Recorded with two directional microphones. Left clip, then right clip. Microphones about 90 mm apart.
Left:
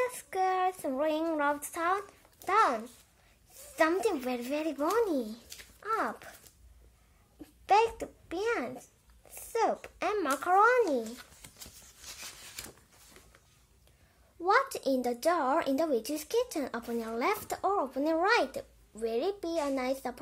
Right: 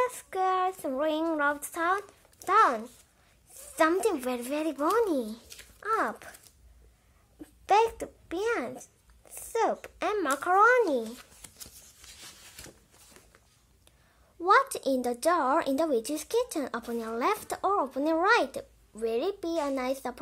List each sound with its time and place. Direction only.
0.0 s child singing: 25° right (ahead or behind)
2.4 s a child's voice: 30° right (ahead or behind)
5.8 s dog: 25° right (ahead or behind)
6.0 s a sound: 30° right (ahead or behind)
7.6 s a child's voice: 20° right (ahead or behind)
14.4 s a child's voice: 25° right (ahead or behind)